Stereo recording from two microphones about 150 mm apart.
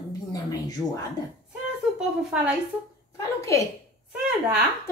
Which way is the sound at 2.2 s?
5° right (ahead or behind).